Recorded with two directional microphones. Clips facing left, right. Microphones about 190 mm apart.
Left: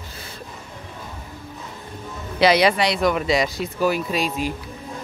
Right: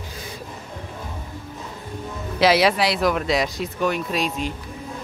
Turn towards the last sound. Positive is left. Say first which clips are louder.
# left 1 dB
turn(degrees=5)  # may be behind; listen again after turning